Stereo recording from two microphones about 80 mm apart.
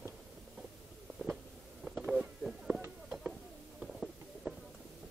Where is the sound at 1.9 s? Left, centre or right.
Centre.